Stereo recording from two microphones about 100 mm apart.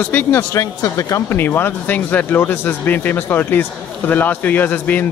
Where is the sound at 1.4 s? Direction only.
20° left (ahead or behind).